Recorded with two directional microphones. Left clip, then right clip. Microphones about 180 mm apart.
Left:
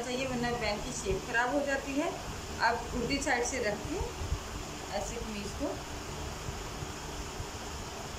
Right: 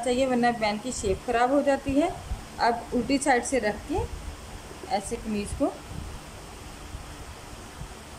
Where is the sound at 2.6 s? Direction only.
35° right (ahead or behind).